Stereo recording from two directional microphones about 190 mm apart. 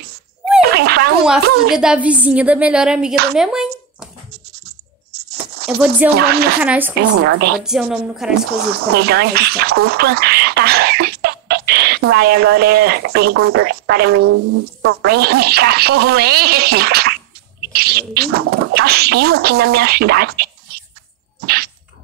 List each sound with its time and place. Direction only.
0.7 s a sound: 55° right (ahead or behind)
1.2 s a woman's voice: 5° right (ahead or behind)
4.6 s coin: 55° right (ahead or behind)
6.1 s speech: 55° right (ahead or behind)
6.6 s a woman's voice: 5° right (ahead or behind)
7.1 s speech: 65° right (ahead or behind)
7.5 s a woman's voice: centre (ahead or behind)
8.6 s speech: 55° right (ahead or behind)
9.6 s a sound: 55° right (ahead or behind)
12.0 s speech: 60° right (ahead or behind)
17.6 s a sound: 55° right (ahead or behind)
18.4 s speech: 70° right (ahead or behind)